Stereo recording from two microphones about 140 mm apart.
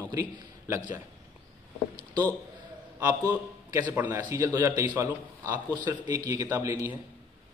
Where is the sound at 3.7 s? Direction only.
20° right (ahead or behind).